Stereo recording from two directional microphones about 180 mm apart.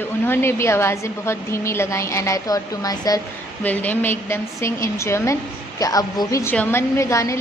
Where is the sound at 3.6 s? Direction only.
10° left (ahead or behind).